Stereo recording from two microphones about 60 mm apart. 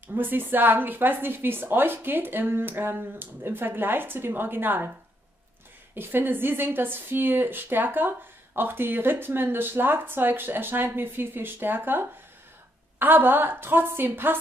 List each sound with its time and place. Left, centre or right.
0.1 s speech: right
5.9 s speech: right